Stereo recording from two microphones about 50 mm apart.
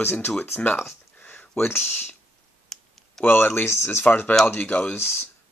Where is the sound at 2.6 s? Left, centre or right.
Centre.